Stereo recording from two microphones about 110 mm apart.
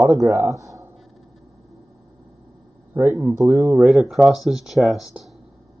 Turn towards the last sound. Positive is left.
turn(degrees=-5)  # may be behind; listen again after turning